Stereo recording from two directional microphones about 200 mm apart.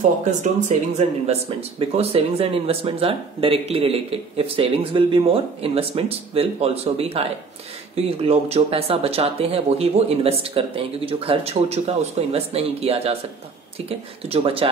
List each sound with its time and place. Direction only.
0.2 s speech: 35° right (ahead or behind)